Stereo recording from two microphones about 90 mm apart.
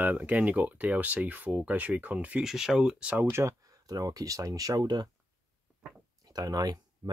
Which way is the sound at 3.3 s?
35° right (ahead or behind).